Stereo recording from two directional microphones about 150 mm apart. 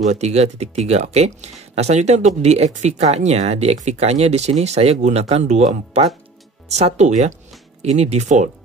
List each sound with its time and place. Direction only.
0.0 s speech: 50° right (ahead or behind)